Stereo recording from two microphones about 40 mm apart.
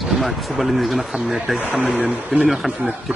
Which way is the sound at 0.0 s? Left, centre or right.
Centre.